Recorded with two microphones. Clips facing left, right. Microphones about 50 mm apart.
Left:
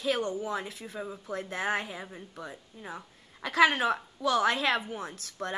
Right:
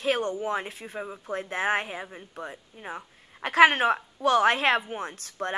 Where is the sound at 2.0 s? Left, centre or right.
Right.